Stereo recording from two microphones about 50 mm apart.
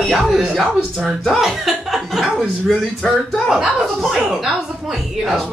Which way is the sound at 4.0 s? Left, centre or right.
Centre.